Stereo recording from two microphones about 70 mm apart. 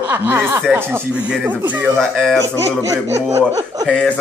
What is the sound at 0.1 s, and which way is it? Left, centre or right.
Speech, right.